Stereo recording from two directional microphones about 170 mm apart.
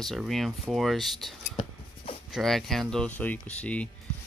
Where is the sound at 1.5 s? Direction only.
35° left (ahead or behind).